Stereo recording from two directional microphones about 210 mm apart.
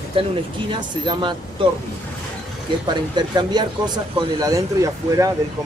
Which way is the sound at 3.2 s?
20° right (ahead or behind).